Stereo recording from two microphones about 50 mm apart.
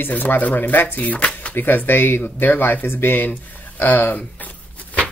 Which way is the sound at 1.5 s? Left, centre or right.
Left.